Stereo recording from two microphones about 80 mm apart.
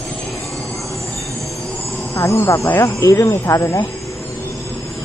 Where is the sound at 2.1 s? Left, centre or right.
Left.